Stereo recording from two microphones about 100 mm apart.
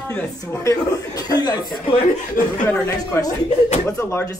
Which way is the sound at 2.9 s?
35° left (ahead or behind).